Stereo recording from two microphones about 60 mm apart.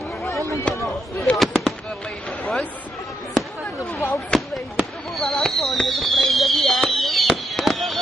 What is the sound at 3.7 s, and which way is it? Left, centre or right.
Speech, left.